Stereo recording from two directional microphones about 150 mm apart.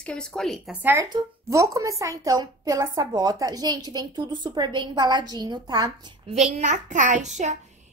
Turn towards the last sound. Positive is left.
turn(degrees=-50)  # may be behind; listen again after turning